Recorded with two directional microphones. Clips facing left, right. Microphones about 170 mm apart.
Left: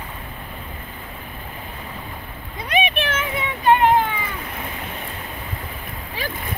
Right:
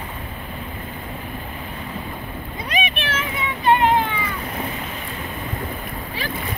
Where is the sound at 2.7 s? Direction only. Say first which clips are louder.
Left 4 dB; 55° left (ahead or behind).